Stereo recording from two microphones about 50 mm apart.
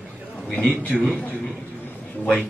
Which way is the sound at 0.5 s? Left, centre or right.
Left.